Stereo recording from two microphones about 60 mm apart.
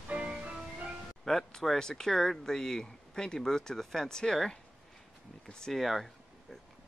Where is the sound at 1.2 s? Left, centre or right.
Centre.